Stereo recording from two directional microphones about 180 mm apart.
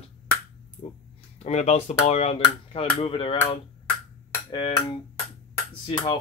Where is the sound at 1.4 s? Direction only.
40° left (ahead or behind).